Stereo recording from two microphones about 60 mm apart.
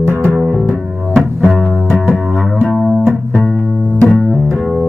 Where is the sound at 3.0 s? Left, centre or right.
Right.